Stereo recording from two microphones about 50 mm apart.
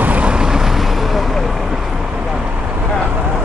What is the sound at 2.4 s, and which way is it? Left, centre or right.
Vehicle, right.